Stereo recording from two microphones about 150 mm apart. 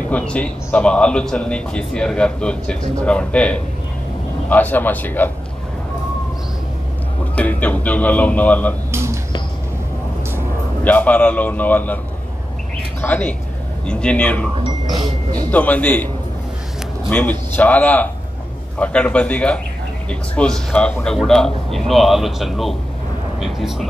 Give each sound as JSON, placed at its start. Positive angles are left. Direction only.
{"t": 0.1, "sound": "a man's voice", "side_deg": 10}
{"t": 7.3, "sound": "a man's voice", "side_deg": 10}
{"t": 8.9, "sound": "a sound", "side_deg": -15}
{"t": 10.8, "sound": "a man's voice", "side_deg": 10}
{"t": 13.0, "sound": "a man's voice", "side_deg": 10}
{"t": 17.1, "sound": "a man's voice", "side_deg": 10}